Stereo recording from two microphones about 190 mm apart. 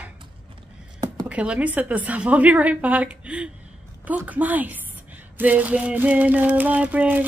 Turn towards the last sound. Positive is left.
turn(degrees=-10)  # may be behind; listen again after turning